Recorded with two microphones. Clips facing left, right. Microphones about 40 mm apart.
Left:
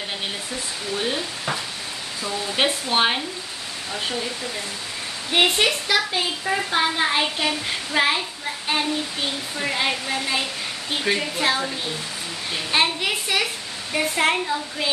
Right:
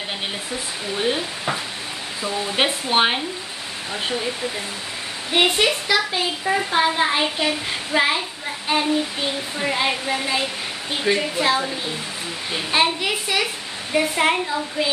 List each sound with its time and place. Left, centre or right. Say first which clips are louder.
0.9 s speech: right 3 dB; centre
5.3 s a woman's voice: right 1 dB; centre
12.7 s a woman's voice: right 1 dB; centre